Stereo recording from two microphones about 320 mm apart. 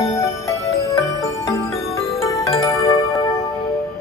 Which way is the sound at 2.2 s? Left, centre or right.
Centre.